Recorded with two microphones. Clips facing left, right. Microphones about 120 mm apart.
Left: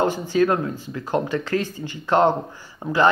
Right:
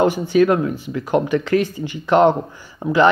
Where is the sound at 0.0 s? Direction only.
15° right (ahead or behind).